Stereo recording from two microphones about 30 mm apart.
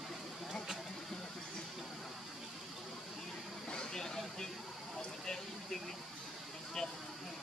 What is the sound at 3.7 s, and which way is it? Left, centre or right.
Vehicle, left.